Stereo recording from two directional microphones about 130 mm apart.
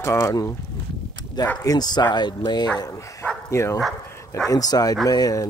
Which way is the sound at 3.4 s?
20° left (ahead or behind).